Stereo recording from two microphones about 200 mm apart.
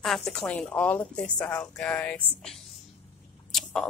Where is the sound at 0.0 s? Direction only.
Centre (ahead or behind).